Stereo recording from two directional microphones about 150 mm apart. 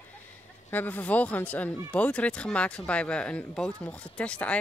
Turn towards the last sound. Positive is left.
turn(degrees=10)  # may be behind; listen again after turning